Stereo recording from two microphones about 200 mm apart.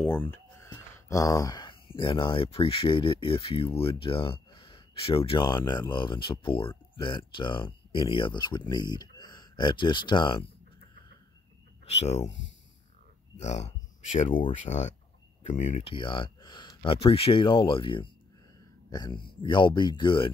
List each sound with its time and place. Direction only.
0.0 s speech: 10° left (ahead or behind)
11.8 s speech: 35° left (ahead or behind)
13.4 s speech: 35° left (ahead or behind)
15.9 s speech: 25° left (ahead or behind)